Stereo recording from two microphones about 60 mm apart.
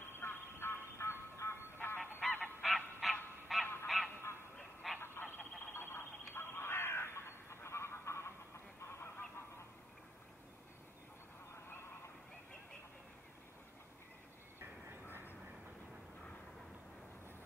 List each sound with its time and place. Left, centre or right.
0.2 s music: left
2.1 s goose: left
2.6 s honk: centre
3.5 s goose: centre
3.8 s honk: centre
5.0 s a sound: left
5.7 s crow: left
8.8 s goose: left